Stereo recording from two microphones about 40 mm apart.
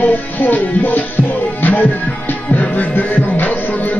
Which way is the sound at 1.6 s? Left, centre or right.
Left.